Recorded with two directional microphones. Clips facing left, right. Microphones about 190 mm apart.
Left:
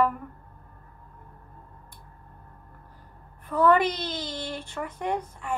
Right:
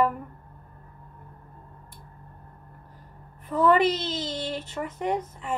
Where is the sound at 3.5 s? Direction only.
10° right (ahead or behind).